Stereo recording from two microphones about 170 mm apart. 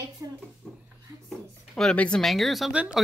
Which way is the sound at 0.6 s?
5° right (ahead or behind).